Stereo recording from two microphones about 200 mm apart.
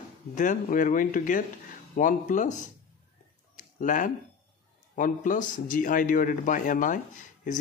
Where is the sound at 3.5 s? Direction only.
40° left (ahead or behind).